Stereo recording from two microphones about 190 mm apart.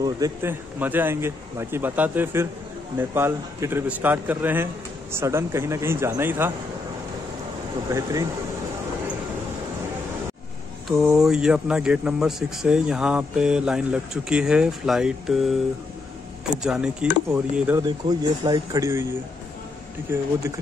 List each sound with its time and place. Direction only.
0.0 s a man's voice: 15° right (ahead or behind)
7.9 s a man's voice: 15° right (ahead or behind)
10.9 s speech: 5° right (ahead or behind)
16.6 s speech: 5° right (ahead or behind)
17.7 s a man's voice: 20° right (ahead or behind)